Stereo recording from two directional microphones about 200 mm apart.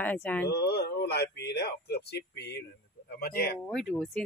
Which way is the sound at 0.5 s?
55° left (ahead or behind).